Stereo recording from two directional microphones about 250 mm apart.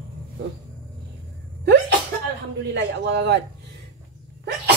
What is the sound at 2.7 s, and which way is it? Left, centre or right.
Speech, right.